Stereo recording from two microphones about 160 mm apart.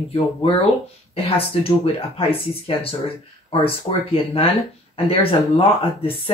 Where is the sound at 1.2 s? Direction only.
35° left (ahead or behind).